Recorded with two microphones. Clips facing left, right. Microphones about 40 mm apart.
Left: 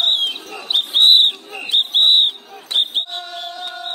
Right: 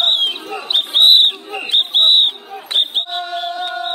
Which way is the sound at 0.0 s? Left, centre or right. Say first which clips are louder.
Right 2 dB; right.